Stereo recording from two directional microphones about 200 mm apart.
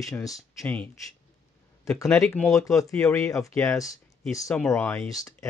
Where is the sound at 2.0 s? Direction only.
5° left (ahead or behind).